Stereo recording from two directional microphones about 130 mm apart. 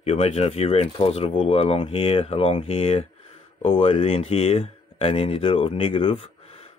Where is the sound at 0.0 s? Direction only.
55° left (ahead or behind).